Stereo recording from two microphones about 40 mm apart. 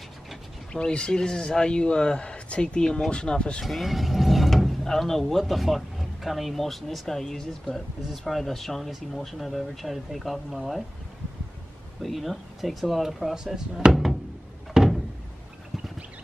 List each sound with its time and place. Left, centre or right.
0.7 s speech: left
3.6 s speech: centre
5.4 s speech: centre
12.0 s speech: centre
13.0 s speech: centre
14.7 s door: centre